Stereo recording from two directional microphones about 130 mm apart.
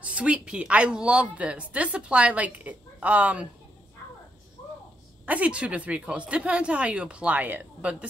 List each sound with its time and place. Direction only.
0.0 s a woman's voice: 10° right (ahead or behind)
5.2 s a woman's voice: 10° right (ahead or behind)